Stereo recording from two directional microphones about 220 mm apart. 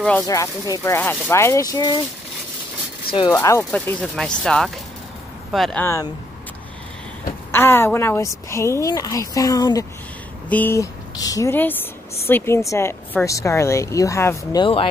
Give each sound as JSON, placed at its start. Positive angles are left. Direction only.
{"t": 0.3, "sound": "speech", "side_deg": 15}
{"t": 3.1, "sound": "speech", "side_deg": 25}
{"t": 3.3, "sound": "speech", "side_deg": 10}
{"t": 7.5, "sound": "speech", "side_deg": 10}